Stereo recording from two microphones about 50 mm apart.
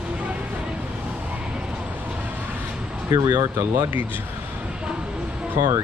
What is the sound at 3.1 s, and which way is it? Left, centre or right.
Speech, right.